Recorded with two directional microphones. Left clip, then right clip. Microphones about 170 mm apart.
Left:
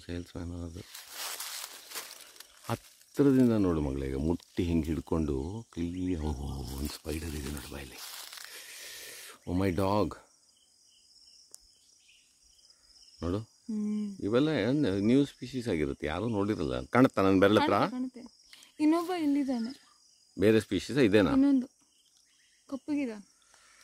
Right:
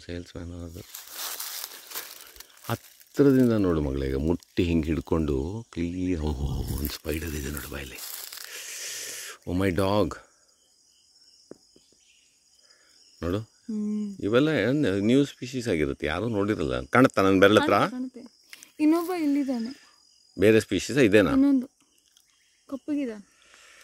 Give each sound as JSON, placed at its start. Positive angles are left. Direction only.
{"t": 0.0, "sound": "speech", "side_deg": 10}
{"t": 0.8, "sound": "crumpling", "side_deg": -85}
{"t": 2.7, "sound": "speech", "side_deg": -5}
{"t": 8.0, "sound": "crumpling", "side_deg": -90}
{"t": 8.5, "sound": "a sound", "side_deg": -5}
{"t": 13.2, "sound": "speech", "side_deg": -5}
{"t": 13.7, "sound": "speech", "side_deg": -25}
{"t": 14.2, "sound": "speech", "side_deg": -10}
{"t": 17.9, "sound": "speech", "side_deg": -20}
{"t": 19.6, "sound": "speech", "side_deg": -5}
{"t": 21.4, "sound": "speech", "side_deg": -25}
{"t": 22.7, "sound": "a sound", "side_deg": -20}